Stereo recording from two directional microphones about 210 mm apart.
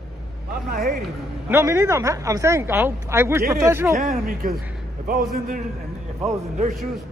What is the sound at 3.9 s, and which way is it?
A man's voice, 35° right (ahead or behind).